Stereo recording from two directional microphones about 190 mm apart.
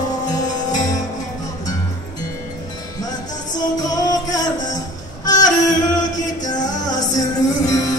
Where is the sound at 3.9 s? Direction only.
20° left (ahead or behind).